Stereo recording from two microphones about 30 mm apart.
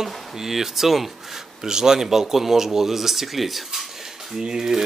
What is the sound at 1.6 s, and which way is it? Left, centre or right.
Speech, centre.